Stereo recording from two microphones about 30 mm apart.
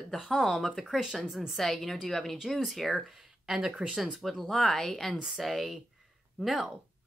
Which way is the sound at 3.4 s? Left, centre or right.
Centre.